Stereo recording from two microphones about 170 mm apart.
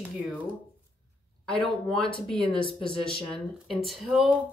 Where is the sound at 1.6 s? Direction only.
5° left (ahead or behind).